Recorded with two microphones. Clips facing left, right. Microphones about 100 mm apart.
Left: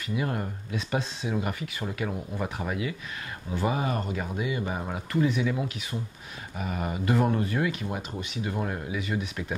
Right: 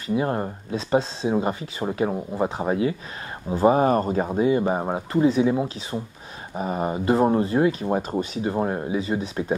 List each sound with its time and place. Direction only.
0.1 s speech: 30° right (ahead or behind)